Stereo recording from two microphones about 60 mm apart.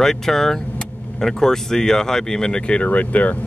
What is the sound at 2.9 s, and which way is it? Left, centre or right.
Speech, left.